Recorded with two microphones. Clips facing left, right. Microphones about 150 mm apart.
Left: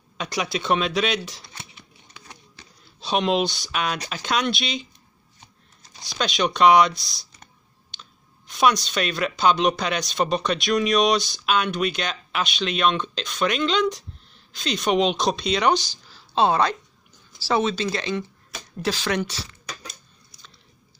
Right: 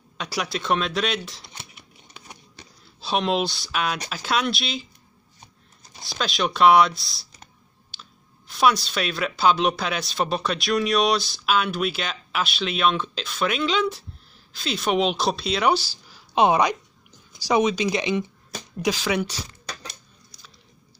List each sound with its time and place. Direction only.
0.2 s speech: centre (ahead or behind)
3.0 s speech: centre (ahead or behind)
6.0 s speech: centre (ahead or behind)